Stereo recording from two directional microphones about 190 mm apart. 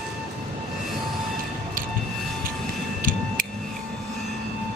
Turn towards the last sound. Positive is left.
turn(degrees=-45)  # may be behind; listen again after turning